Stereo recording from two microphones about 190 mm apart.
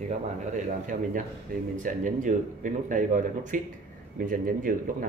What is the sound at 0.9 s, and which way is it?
Speech, 40° right (ahead or behind).